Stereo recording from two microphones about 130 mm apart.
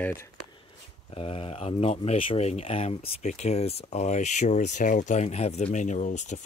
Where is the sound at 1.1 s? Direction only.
45° left (ahead or behind).